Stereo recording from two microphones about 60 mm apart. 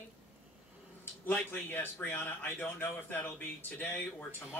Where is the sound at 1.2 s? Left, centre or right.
Left.